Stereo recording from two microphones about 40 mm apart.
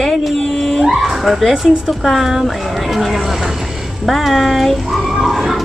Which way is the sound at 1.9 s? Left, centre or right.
Centre.